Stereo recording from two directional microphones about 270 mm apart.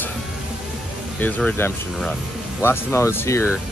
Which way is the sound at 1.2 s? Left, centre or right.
Centre.